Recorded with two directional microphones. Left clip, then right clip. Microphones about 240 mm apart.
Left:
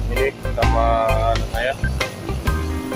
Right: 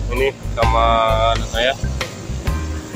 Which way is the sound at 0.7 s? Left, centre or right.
Centre.